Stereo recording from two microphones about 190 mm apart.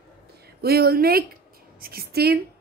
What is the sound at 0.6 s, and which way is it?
A woman's voice, 55° right (ahead or behind).